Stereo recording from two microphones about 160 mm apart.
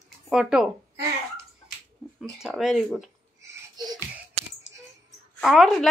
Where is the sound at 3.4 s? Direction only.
20° right (ahead or behind).